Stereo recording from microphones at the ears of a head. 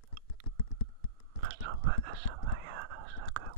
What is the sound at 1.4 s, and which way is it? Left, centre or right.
Whispering, right.